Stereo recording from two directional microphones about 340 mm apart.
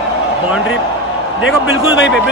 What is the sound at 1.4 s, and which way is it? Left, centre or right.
Speech, left.